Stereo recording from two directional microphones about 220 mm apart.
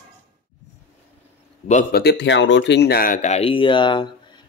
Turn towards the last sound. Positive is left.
turn(degrees=20)  # may be behind; listen again after turning